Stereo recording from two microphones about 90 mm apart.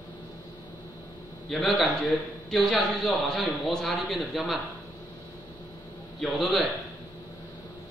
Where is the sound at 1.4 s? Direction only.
Centre (ahead or behind).